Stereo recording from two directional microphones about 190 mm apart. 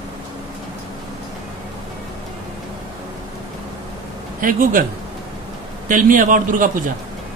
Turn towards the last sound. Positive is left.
turn(degrees=-45)  # may be behind; listen again after turning